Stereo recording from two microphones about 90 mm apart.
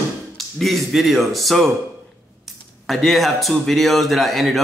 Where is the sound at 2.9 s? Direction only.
Centre (ahead or behind).